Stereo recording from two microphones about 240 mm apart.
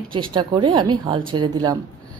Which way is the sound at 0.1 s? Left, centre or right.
Centre.